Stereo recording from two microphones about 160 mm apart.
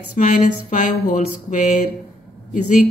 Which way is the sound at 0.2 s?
50° left (ahead or behind).